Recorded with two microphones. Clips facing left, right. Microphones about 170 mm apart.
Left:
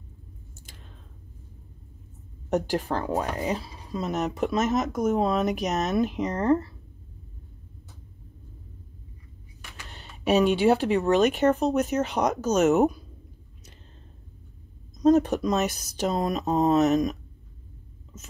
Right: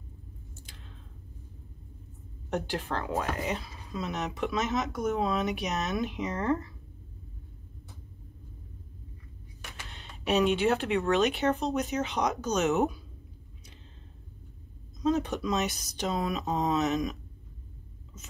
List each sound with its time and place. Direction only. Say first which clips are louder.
2.5 s speech: left 6 dB; 40° left (ahead or behind)
10.5 s speech: left 5 dB; 35° left (ahead or behind)
15.0 s speech: left 8 dB; 40° left (ahead or behind)